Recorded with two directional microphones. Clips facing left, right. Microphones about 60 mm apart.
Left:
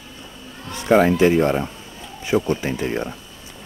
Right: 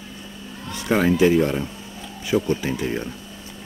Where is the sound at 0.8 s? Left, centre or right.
Left.